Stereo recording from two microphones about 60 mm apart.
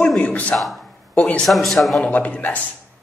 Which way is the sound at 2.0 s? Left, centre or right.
Left.